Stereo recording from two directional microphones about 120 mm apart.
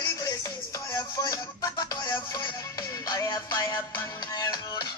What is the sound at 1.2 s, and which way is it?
Music, 30° left (ahead or behind).